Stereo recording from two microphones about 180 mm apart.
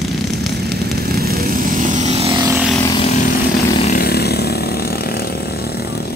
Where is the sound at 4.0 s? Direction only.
60° left (ahead or behind).